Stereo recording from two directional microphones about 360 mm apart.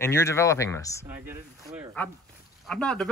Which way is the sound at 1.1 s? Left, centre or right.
Centre.